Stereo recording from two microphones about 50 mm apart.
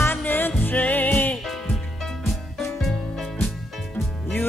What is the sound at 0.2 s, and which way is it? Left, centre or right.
Music, left.